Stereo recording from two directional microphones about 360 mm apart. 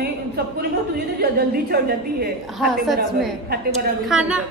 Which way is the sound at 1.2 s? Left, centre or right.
Right.